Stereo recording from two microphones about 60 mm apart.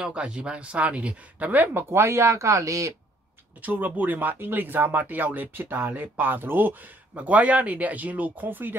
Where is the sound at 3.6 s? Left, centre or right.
Right.